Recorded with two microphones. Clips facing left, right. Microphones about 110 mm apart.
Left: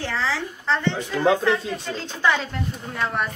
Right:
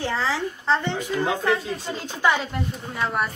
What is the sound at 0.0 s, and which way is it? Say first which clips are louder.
A woman's voice: right 1 dB; 15° right (ahead or behind).